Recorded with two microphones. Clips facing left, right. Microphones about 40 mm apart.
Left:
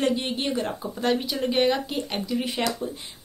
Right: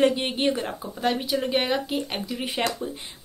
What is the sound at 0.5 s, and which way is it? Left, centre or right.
A woman's voice, centre.